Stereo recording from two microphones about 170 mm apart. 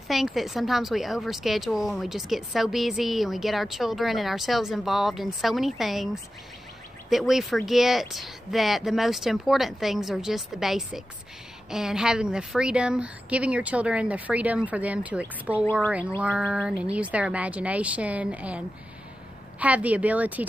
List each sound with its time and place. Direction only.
0.1 s a woman's voice: centre (ahead or behind)
7.1 s a woman's voice: centre (ahead or behind)
19.6 s a woman's voice: 10° right (ahead or behind)